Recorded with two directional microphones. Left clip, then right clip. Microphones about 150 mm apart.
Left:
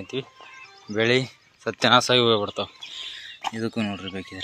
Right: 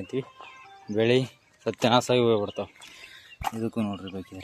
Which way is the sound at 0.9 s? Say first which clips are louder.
Left 2 dB; 20° right (ahead or behind).